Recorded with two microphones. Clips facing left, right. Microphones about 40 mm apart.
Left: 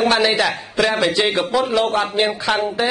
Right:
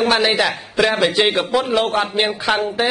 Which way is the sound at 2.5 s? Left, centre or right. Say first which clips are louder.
Right 3 dB; centre.